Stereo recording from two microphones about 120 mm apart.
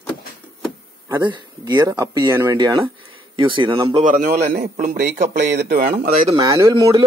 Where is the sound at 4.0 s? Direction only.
80° right.